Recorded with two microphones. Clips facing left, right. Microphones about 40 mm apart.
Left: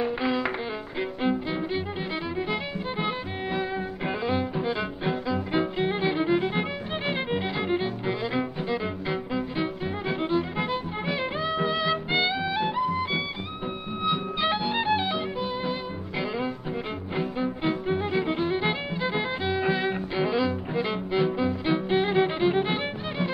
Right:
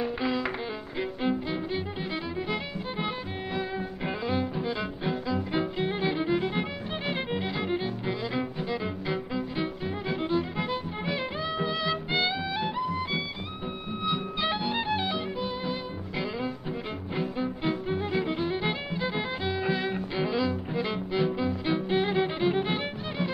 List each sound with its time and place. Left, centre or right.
0.0 s music: centre